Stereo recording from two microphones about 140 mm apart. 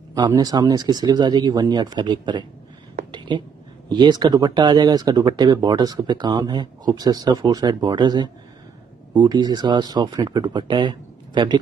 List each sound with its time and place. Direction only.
0.1 s speech: 25° right (ahead or behind)
3.1 s a sound: 35° right (ahead or behind)
3.9 s speech: 30° right (ahead or behind)